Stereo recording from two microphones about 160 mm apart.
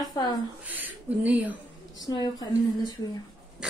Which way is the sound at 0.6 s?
10° right (ahead or behind).